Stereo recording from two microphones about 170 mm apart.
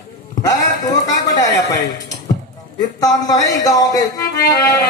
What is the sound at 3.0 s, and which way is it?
Speech, 20° left (ahead or behind).